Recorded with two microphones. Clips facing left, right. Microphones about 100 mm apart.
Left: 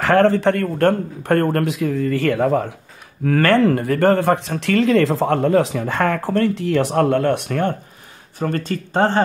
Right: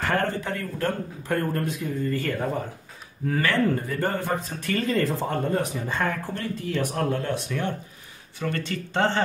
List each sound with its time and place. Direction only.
0.0 s speech: 90° left
3.3 s speech: 70° left (ahead or behind)
8.4 s speech: 40° left (ahead or behind)